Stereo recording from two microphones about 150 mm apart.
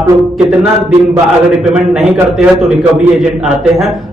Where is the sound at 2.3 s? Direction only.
Centre (ahead or behind).